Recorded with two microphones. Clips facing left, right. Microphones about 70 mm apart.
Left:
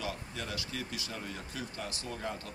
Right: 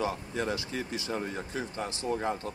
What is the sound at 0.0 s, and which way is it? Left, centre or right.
Speech, right.